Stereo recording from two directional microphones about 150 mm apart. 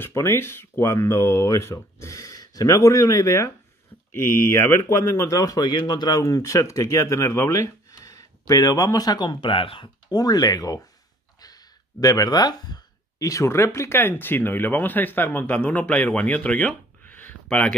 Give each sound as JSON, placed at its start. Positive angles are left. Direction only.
{"t": 0.0, "sound": "speech", "side_deg": 15}